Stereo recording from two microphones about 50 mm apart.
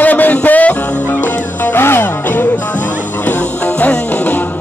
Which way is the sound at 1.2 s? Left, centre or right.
Left.